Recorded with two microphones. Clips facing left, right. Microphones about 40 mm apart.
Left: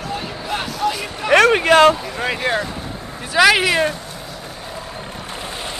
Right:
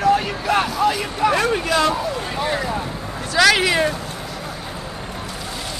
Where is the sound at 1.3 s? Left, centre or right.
Left.